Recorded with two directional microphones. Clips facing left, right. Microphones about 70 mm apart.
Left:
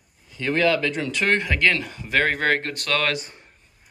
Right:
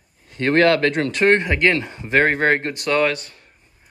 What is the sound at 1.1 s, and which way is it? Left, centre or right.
Speech, right.